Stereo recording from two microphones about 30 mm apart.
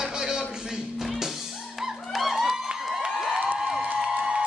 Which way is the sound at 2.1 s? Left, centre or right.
Centre.